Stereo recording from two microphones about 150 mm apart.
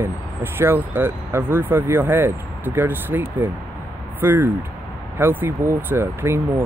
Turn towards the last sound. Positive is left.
turn(degrees=-15)  # may be behind; listen again after turning